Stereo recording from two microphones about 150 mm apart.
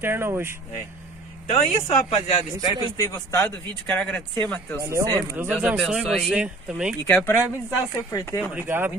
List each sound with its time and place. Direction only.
0.0 s speech: 15° right (ahead or behind)
1.6 s speech: 45° left (ahead or behind)
3.0 s a man's voice: 20° left (ahead or behind)
3.4 s speech: 10° left (ahead or behind)
4.8 s speech: 20° right (ahead or behind)
7.1 s a man's voice: 15° left (ahead or behind)
8.5 s speech: 15° right (ahead or behind)